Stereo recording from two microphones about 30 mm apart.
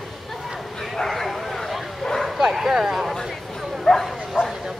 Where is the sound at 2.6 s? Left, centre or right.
Centre.